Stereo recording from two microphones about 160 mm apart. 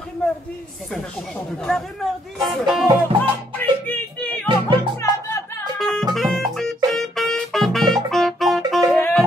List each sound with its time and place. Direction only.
1.6 s speech: centre (ahead or behind)
3.2 s music: 10° left (ahead or behind)
4.5 s music: 30° right (ahead or behind)
5.8 s music: centre (ahead or behind)